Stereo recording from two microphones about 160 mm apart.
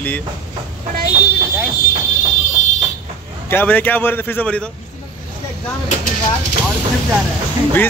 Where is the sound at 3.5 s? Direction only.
10° left (ahead or behind).